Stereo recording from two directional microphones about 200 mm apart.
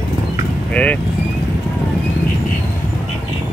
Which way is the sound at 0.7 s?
5° left (ahead or behind).